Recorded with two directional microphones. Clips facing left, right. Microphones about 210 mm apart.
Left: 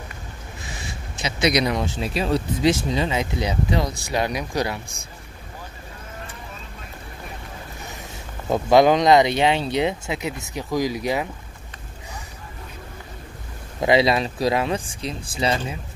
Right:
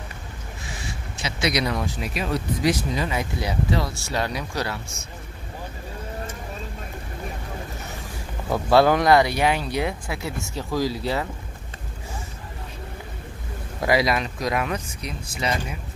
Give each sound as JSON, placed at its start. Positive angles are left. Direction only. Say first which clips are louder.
{"t": 1.1, "sound": "speech", "louder": "left 4 dB", "side_deg": 20}
{"t": 8.5, "sound": "speech", "louder": "left 2 dB", "side_deg": 15}
{"t": 13.7, "sound": "speech", "louder": "left 3 dB", "side_deg": 25}